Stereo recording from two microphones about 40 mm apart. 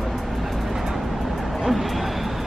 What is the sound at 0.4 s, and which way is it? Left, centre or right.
Vehicle, centre.